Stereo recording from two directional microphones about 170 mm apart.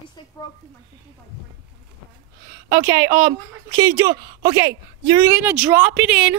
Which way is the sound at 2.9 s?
15° right (ahead or behind).